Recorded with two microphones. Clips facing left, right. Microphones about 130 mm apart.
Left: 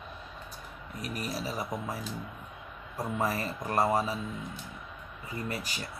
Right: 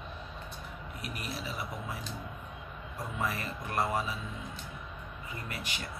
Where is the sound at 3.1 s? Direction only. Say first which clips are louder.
Left 4 dB; 35° left (ahead or behind).